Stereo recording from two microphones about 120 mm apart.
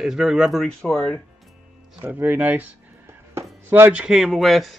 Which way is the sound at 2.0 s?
15° right (ahead or behind).